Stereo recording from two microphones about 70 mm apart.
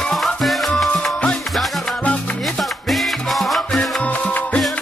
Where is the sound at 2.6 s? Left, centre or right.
Centre.